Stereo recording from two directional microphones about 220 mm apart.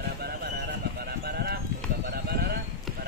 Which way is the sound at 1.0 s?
45° right (ahead or behind).